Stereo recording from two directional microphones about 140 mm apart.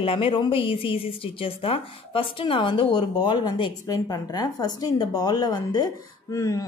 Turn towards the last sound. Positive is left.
turn(degrees=25)  # may be behind; listen again after turning